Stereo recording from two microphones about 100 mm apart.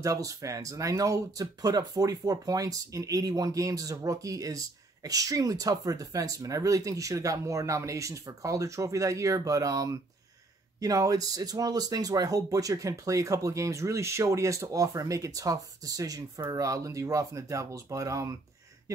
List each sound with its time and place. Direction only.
0.0 s speech: 35° right (ahead or behind)